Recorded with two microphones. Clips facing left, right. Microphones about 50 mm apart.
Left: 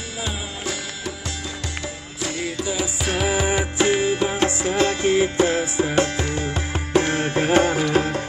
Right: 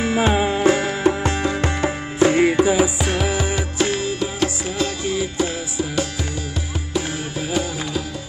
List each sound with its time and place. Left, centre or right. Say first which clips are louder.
0.1 s music: right 11 dB; right
2.6 s music: right 9 dB; right
3.1 s music: even; centre
3.4 s music: left 2 dB; centre; by 6.0 s left
7.0 s music: left 6 dB; left